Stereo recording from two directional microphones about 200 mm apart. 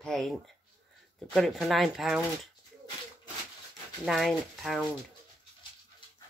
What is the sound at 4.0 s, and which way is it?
Speech, centre (ahead or behind).